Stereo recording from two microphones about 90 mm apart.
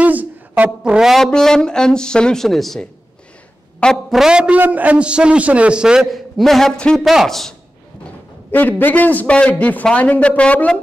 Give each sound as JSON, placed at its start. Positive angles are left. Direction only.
{"t": 0.0, "sound": "a woman's voice", "side_deg": -15}
{"t": 8.5, "sound": "a man's voice", "side_deg": 20}